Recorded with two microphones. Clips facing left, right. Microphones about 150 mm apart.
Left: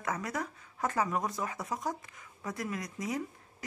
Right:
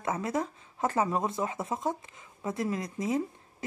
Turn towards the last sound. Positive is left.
turn(degrees=-25)  # may be behind; listen again after turning